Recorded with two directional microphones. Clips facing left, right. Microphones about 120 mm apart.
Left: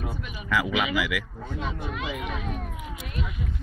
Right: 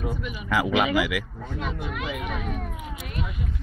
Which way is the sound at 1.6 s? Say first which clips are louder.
Right 1 dB; 30° left (ahead or behind).